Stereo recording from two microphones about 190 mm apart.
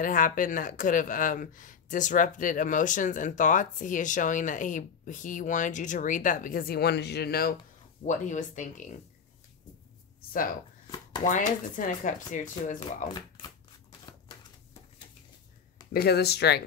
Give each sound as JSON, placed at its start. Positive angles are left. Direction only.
{"t": 0.0, "sound": "speech", "side_deg": 45}
{"t": 8.0, "sound": "speech", "side_deg": 40}
{"t": 11.2, "sound": "speech", "side_deg": 40}
{"t": 15.9, "sound": "speech", "side_deg": 55}